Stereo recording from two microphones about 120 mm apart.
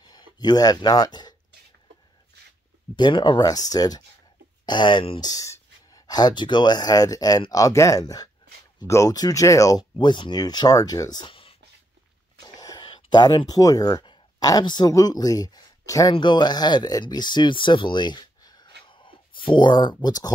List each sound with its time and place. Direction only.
0.0 s speech: 35° left (ahead or behind)
3.0 s speech: 40° left (ahead or behind)
5.2 s speech: 30° left (ahead or behind); by 11.5 s 45° left (ahead or behind)
12.5 s a sound: 30° left (ahead or behind)
12.8 s speech: 40° left (ahead or behind)
16.2 s speech: 40° left (ahead or behind)